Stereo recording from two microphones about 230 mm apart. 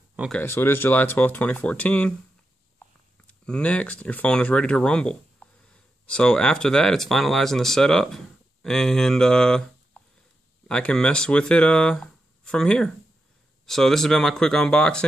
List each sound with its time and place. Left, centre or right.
0.1 s a sound: centre
0.4 s speech: centre
3.3 s speech: centre
10.7 s speech: centre